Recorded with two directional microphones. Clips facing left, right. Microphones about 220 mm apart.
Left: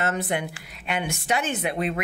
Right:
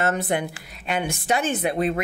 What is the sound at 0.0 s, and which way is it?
Speech, 40° right (ahead or behind).